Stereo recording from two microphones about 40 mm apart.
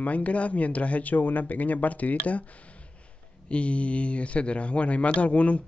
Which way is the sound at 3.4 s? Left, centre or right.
Left.